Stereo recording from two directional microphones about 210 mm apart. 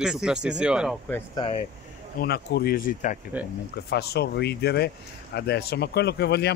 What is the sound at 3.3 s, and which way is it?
Speech, 5° right (ahead or behind).